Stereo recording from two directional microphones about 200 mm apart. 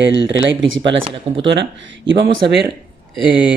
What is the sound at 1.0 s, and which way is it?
Speech, 30° right (ahead or behind).